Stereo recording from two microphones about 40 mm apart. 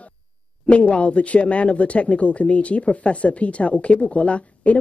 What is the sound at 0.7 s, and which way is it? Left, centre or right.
Speech, left.